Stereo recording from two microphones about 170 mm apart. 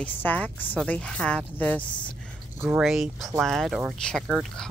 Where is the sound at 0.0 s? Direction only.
10° left (ahead or behind).